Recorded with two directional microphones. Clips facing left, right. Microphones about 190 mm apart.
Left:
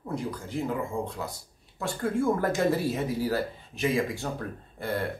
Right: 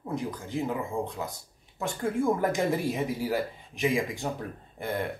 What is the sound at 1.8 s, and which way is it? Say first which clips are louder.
Speech: left 1 dB; 15° right (ahead or behind).